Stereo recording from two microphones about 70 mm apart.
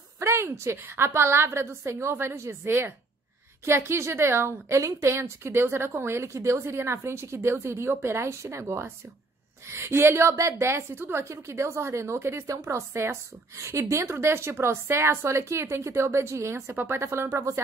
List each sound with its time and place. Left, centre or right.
0.2 s a woman's voice: right
16.7 s speech: right
17.0 s a woman's voice: right